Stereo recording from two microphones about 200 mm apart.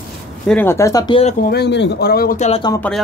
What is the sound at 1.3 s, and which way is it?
Speech, 50° left (ahead or behind).